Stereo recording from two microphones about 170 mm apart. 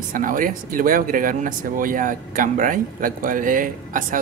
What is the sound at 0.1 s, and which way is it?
Speech, 55° right (ahead or behind).